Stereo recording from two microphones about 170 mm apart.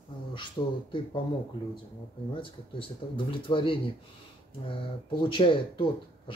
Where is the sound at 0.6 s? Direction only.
30° left (ahead or behind).